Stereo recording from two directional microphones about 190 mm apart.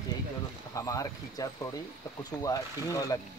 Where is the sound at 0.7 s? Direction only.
15° left (ahead or behind).